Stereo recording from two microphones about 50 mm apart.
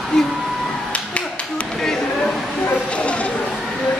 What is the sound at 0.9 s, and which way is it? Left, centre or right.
Finger snapping, left.